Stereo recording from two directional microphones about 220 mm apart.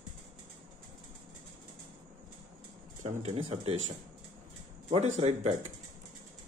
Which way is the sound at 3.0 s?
30° right (ahead or behind).